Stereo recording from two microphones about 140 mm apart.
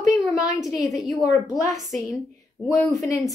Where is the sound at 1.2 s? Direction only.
25° left (ahead or behind).